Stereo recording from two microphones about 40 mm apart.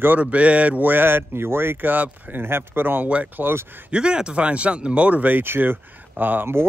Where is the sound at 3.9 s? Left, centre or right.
Right.